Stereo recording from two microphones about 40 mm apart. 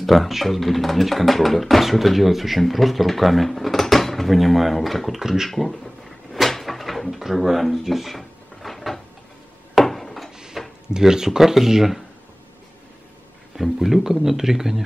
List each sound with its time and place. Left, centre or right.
0.0 s speech: centre
6.5 s drawer open or close: centre
9.8 s a sound: centre
10.3 s a sound: centre
10.9 s speech: centre
13.6 s speech: centre